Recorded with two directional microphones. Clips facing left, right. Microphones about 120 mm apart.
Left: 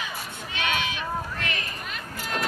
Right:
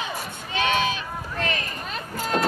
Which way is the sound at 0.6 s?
35° right (ahead or behind).